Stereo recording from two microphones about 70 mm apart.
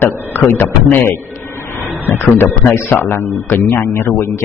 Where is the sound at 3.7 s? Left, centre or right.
Left.